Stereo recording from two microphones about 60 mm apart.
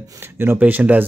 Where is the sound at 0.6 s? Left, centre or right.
Right.